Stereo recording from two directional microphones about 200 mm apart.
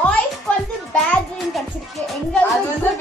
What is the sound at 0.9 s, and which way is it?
A woman's voice, 5° left (ahead or behind).